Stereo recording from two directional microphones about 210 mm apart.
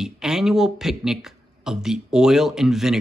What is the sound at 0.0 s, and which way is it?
Speech, centre (ahead or behind).